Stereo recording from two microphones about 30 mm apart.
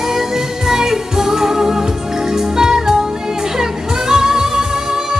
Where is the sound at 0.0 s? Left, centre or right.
Centre.